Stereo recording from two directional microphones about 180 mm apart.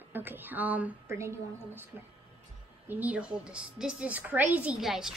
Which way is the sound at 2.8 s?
10° right (ahead or behind).